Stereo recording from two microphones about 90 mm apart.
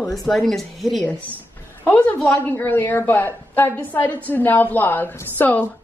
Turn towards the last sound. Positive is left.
turn(degrees=20)  # may be behind; listen again after turning